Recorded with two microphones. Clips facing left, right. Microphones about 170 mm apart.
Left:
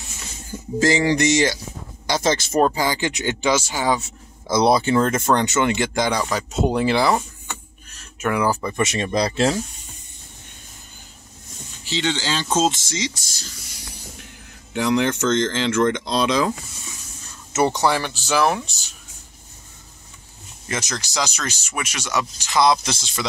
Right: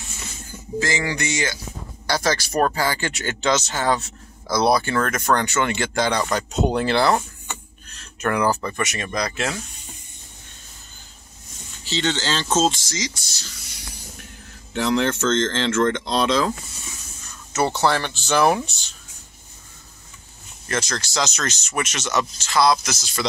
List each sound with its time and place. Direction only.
0.7 s speech: 35° left (ahead or behind)
2.0 s speech: 20° left (ahead or behind)
4.5 s speech: 20° left (ahead or behind)
6.2 s speech: 5° left (ahead or behind)
8.8 s speech: 30° left (ahead or behind)
11.8 s speech: 10° left (ahead or behind)
13.2 s speech: 50° left (ahead or behind)
14.7 s speech: 15° left (ahead or behind)
20.6 s speech: 15° left (ahead or behind)